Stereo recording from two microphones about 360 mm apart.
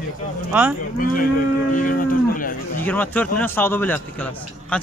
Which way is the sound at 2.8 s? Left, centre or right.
Centre.